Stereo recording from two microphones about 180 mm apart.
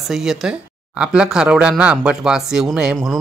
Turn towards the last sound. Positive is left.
turn(degrees=-5)  # may be behind; listen again after turning